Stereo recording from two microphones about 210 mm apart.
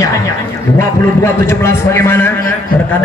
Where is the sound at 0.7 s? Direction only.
10° left (ahead or behind).